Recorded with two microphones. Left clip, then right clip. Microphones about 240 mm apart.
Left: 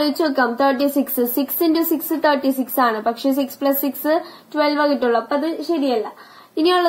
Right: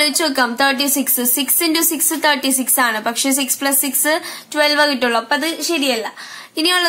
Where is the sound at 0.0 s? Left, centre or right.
Right.